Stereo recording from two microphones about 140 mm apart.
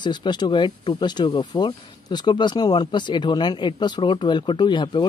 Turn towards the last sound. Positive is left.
turn(degrees=35)  # may be behind; listen again after turning